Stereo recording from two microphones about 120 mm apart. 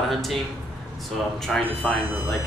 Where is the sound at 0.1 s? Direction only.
Centre (ahead or behind).